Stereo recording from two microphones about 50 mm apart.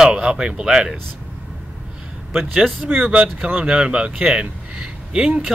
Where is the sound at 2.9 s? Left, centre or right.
Right.